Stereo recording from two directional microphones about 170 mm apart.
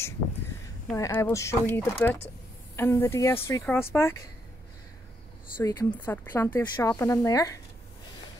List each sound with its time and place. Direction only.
0.9 s speech: 15° left (ahead or behind)
5.6 s speech: 20° left (ahead or behind)